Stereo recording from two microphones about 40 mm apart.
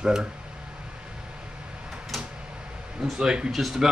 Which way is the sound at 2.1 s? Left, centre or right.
Centre.